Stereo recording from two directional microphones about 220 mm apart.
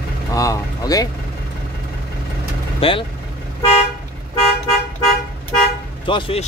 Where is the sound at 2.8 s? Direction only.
25° left (ahead or behind).